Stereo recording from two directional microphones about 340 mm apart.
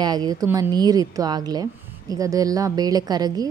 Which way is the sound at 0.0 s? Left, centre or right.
Centre.